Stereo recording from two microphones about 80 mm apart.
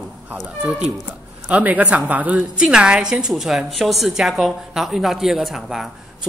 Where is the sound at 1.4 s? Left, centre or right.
Centre.